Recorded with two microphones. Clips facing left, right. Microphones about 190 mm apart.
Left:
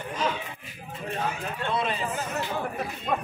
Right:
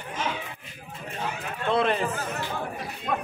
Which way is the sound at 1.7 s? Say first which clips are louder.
Right 6 dB; 55° right (ahead or behind).